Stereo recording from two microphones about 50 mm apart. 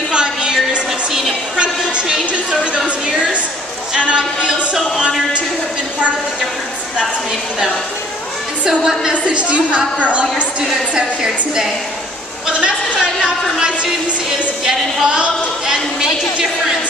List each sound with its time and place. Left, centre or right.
0.1 s music: centre
1.6 s a sound: centre
3.9 s a sound: centre
8.6 s a woman's voice: centre
9.2 s a woman's voice: right
13.0 s a woman's voice: centre